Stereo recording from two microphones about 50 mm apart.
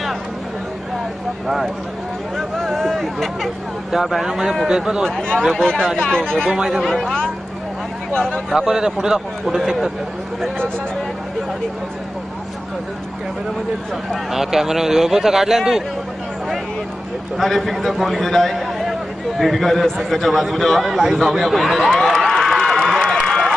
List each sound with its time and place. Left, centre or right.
2.3 s a sound: centre
3.9 s speech: centre
5.0 s speech: centre
6.5 s speech: centre
6.8 s a man's voice: centre
8.1 s speech: left
8.5 s speech: centre
14.3 s speech: centre
17.4 s a man's voice: centre
22.2 s crowd: centre
23.2 s a sound: centre